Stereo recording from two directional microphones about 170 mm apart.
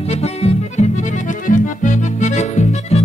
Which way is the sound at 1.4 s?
50° left (ahead or behind).